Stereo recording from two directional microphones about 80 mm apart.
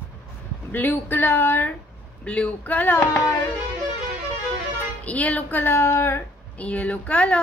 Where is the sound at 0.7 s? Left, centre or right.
Left.